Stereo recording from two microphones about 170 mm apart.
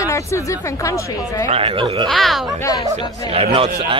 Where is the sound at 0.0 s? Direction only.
15° left (ahead or behind).